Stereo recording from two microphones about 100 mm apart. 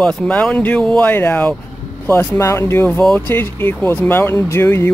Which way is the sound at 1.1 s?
20° left (ahead or behind).